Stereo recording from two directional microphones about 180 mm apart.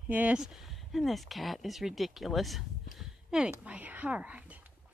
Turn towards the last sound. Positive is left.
turn(degrees=-10)  # may be behind; listen again after turning